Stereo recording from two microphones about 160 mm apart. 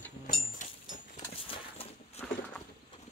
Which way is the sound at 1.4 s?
35° left (ahead or behind).